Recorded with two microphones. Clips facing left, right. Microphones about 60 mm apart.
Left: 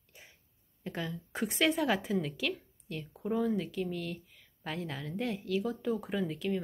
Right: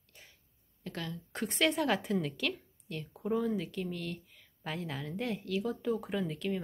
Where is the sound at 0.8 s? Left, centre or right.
Centre.